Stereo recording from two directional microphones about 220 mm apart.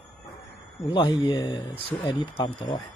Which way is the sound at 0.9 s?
20° left (ahead or behind).